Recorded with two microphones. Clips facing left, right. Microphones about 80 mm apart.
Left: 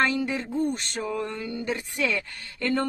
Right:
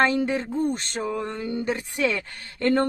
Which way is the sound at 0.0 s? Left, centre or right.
Right.